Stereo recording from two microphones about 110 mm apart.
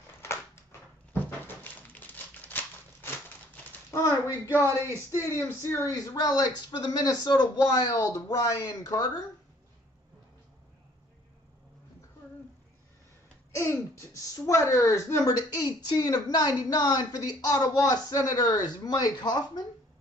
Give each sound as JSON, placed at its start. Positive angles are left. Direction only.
{"t": 0.2, "sound": "a sound", "side_deg": 25}
{"t": 3.9, "sound": "speech", "side_deg": 30}
{"t": 4.5, "sound": "speech", "side_deg": -25}
{"t": 5.6, "sound": "speech", "side_deg": 25}
{"t": 6.1, "sound": "speech", "side_deg": 40}
{"t": 13.6, "sound": "speech", "side_deg": 25}